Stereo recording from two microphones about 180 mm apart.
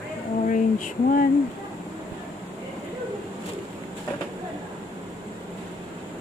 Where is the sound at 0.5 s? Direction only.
50° left (ahead or behind).